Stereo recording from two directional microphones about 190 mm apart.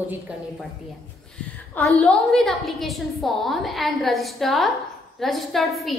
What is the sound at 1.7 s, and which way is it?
A woman's voice, centre (ahead or behind).